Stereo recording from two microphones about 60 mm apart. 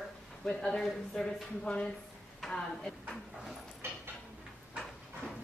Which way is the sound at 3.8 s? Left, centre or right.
Right.